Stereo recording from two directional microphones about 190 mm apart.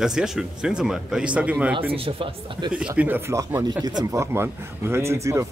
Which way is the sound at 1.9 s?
30° right (ahead or behind).